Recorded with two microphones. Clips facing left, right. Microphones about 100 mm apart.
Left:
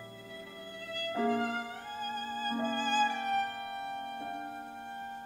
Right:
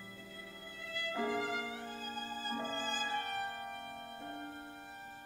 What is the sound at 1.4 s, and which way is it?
Music, 50° left (ahead or behind).